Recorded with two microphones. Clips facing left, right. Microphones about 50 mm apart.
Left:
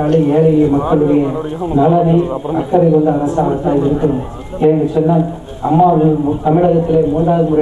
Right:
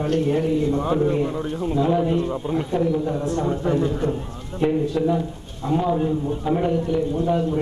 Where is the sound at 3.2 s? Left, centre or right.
Centre.